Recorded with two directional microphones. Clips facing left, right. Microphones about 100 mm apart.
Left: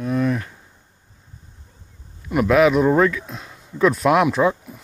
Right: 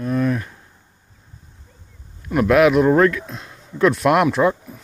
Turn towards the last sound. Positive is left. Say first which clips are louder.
# right 1 dB
turn(degrees=0)  # may be behind; listen again after turning